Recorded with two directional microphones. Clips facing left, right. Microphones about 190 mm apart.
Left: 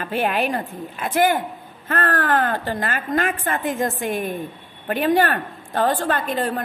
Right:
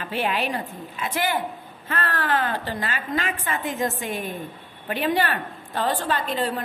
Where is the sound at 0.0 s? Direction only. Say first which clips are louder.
Left 4 dB; 50° left (ahead or behind).